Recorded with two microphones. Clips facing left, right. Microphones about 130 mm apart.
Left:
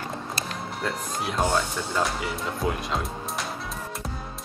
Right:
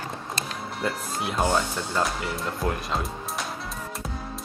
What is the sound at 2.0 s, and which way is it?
Speech, centre (ahead or behind).